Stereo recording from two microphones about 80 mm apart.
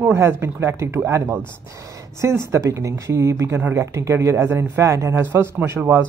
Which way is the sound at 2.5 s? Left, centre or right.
Right.